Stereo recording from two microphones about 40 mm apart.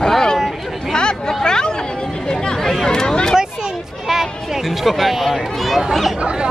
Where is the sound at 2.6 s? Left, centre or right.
Centre.